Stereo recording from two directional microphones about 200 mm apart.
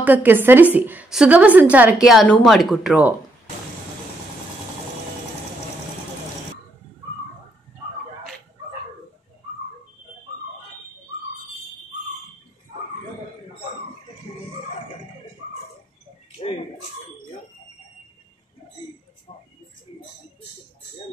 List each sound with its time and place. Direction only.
0.0 s a woman's voice: 10° right (ahead or behind)
14.3 s music: 20° left (ahead or behind)
16.3 s bird: 30° left (ahead or behind)